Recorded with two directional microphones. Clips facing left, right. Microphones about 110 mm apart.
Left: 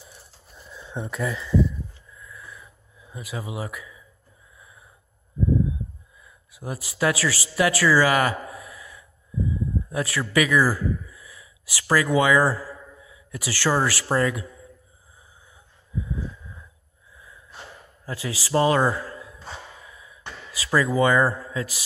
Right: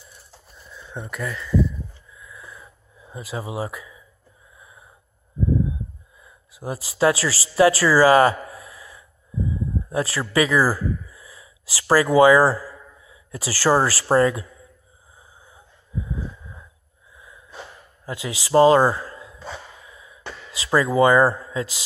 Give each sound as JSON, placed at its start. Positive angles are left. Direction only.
{"t": 0.7, "sound": "speech", "side_deg": 5}
{"t": 2.1, "sound": "a sound", "side_deg": -20}
{"t": 3.1, "sound": "speech", "side_deg": -30}
{"t": 4.6, "sound": "wheeze", "side_deg": -20}
{"t": 6.2, "sound": "speech", "side_deg": -25}
{"t": 18.0, "sound": "a man's voice", "side_deg": -20}